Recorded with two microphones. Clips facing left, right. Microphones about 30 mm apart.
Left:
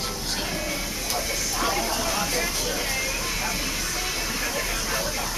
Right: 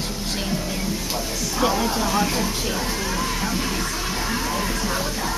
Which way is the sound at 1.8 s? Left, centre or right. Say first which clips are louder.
Right 4 dB; centre.